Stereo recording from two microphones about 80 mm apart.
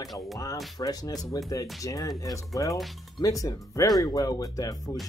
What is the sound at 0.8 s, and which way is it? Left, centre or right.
Speech, left.